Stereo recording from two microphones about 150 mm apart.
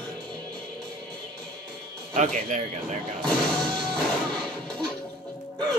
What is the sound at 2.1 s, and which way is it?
Speech, 55° right (ahead or behind).